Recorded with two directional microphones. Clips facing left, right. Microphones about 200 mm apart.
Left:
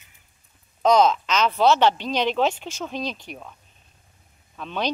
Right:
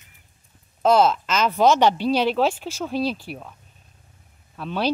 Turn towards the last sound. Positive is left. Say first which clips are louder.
# right 2 dB
turn(degrees=-5)  # may be behind; listen again after turning